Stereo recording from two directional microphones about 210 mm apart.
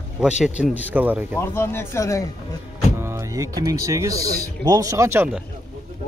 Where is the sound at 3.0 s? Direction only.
15° right (ahead or behind).